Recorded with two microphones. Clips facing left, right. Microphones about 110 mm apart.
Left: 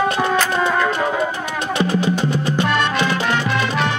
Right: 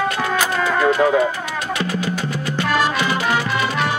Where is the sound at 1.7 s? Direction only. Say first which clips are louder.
Left 7 dB; 25° left (ahead or behind).